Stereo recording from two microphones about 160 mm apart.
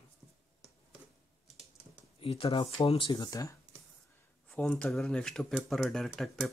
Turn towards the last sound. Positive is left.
turn(degrees=5)  # may be behind; listen again after turning